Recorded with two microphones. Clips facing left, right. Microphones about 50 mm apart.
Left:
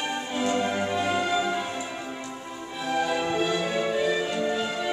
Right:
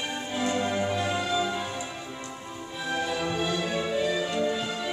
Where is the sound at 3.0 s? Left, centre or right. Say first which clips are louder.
Left 3 dB; centre.